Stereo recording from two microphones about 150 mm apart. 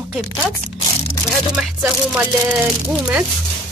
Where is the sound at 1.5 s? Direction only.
5° right (ahead or behind).